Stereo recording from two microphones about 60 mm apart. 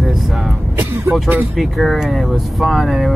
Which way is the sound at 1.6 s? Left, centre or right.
Centre.